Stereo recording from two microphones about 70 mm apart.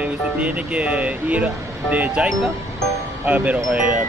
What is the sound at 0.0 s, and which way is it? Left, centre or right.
Speech, centre.